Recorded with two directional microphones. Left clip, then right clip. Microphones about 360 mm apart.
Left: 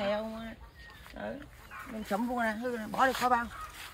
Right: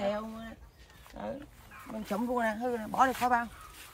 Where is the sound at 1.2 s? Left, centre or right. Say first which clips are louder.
Right 1 dB; right.